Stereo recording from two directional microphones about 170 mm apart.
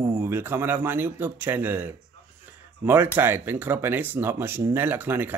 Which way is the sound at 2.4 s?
10° right (ahead or behind).